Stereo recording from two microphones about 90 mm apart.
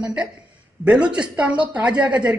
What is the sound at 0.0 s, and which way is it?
A woman's voice, 10° right (ahead or behind).